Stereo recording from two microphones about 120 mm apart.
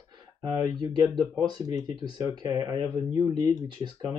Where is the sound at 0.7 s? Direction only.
35° right (ahead or behind).